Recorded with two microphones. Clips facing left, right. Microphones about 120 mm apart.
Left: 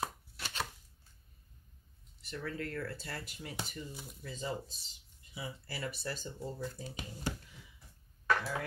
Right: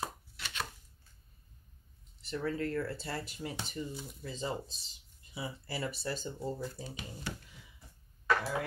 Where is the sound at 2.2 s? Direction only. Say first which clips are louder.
Right 5 dB; 30° right (ahead or behind).